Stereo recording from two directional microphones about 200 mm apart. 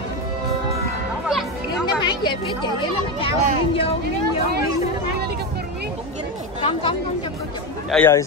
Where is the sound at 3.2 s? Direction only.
25° left (ahead or behind).